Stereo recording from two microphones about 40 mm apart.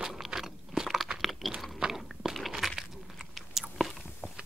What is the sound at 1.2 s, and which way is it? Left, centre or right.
Chewing, centre.